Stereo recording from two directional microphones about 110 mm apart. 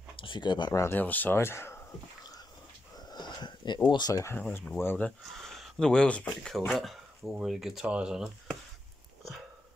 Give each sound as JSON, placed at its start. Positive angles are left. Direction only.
{"t": 0.1, "sound": "a sound", "side_deg": 50}
{"t": 0.7, "sound": "speech", "side_deg": 20}
{"t": 3.1, "sound": "sniff", "side_deg": 40}
{"t": 3.9, "sound": "speech", "side_deg": 40}
{"t": 4.2, "sound": "speech", "side_deg": 20}
{"t": 5.3, "sound": "speech", "side_deg": 0}